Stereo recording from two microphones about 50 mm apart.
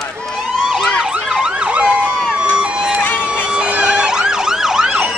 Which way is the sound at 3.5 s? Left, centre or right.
Right.